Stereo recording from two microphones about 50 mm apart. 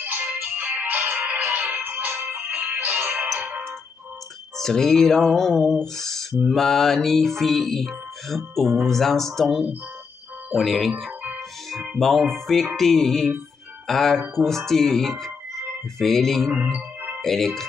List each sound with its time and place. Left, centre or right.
0.0 s music: right
4.6 s music: centre
10.5 s music: centre
12.0 s music: centre
17.2 s speech: centre